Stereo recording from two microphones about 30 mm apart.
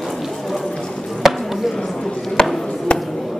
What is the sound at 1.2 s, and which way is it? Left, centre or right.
Chop, centre.